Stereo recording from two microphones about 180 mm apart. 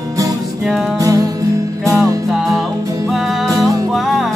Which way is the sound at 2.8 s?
20° right (ahead or behind).